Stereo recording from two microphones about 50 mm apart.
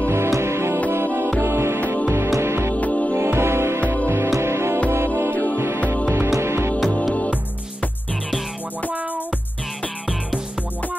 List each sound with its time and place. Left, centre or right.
0.0 s music: right
2.7 s music: left
3.2 s music: right
5.3 s music: left
6.0 s music: right